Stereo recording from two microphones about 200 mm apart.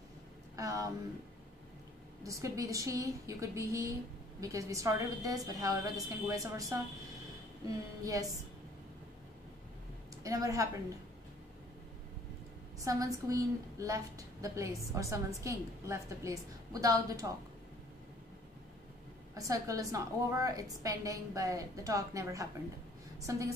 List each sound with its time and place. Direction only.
0.6 s speech: 15° right (ahead or behind)
2.2 s a woman's voice: 15° right (ahead or behind)
10.2 s a woman's voice: 15° right (ahead or behind)
12.8 s a woman's voice: 15° right (ahead or behind)
19.3 s a woman's voice: 15° right (ahead or behind)